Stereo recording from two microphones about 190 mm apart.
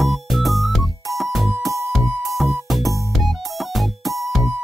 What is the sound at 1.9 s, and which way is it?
Music, centre (ahead or behind).